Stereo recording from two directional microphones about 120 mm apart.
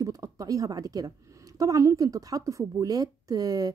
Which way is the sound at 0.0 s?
30° right (ahead or behind).